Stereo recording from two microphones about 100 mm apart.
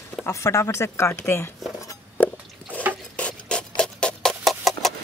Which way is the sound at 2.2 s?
20° left (ahead or behind).